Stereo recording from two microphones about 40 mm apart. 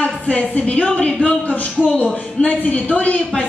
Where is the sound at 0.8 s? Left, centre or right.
Centre.